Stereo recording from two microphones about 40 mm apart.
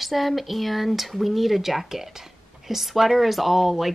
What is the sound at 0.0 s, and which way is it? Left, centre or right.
Speech, centre.